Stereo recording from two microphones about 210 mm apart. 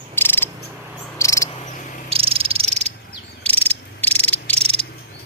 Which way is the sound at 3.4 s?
5° left (ahead or behind).